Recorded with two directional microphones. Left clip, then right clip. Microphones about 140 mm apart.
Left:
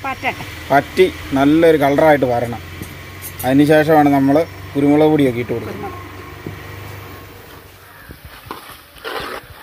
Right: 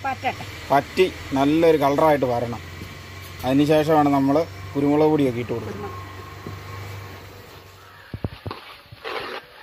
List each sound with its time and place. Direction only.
0.0 s speech: 20° left (ahead or behind)
0.7 s speech: centre (ahead or behind)